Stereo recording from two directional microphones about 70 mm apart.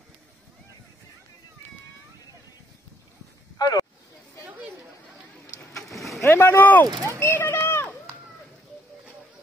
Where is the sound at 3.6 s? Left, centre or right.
Left.